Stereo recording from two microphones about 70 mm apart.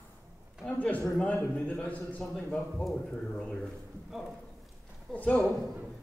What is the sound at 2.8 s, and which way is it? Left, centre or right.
Speech, centre.